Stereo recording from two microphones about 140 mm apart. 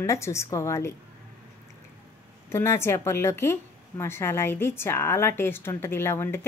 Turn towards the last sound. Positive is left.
turn(degrees=15)  # may be behind; listen again after turning